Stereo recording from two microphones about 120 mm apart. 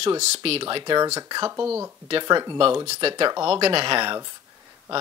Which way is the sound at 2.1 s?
40° right (ahead or behind).